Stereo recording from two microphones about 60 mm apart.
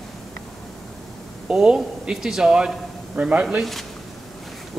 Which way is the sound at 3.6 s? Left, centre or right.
Centre.